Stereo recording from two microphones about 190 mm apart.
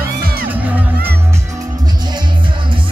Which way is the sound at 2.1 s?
25° right (ahead or behind).